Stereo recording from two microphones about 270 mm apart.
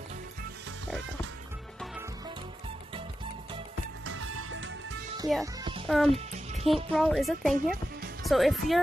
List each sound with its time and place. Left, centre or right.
4.0 s music: right
5.4 s music: centre
5.9 s speech: centre
6.1 s music: right
6.6 s speech: centre